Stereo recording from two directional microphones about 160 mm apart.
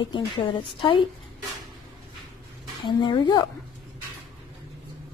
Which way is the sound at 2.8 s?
30° left (ahead or behind).